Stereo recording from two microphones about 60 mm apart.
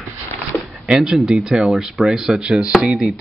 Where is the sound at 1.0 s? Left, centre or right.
Centre.